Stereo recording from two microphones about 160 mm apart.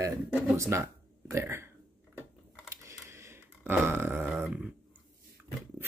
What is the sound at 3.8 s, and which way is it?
Speech, 15° right (ahead or behind).